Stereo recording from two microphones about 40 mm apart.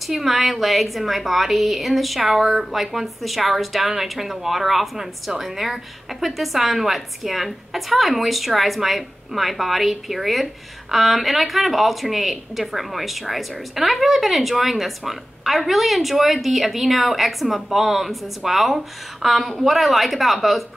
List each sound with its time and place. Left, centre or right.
0.0 s a woman's voice: centre